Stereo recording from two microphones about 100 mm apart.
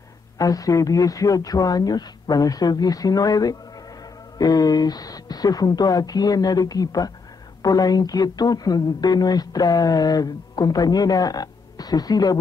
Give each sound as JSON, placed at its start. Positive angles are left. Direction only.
{"t": 0.4, "sound": "speech", "side_deg": 35}